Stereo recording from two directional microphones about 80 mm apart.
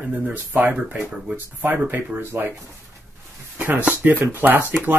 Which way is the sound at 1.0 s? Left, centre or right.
Centre.